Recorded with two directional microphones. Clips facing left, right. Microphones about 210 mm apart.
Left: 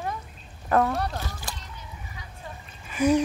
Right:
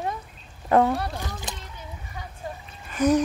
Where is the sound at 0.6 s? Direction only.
25° right (ahead or behind).